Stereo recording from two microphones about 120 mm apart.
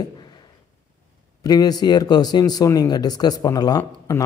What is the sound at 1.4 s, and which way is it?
Speech, 30° left (ahead or behind).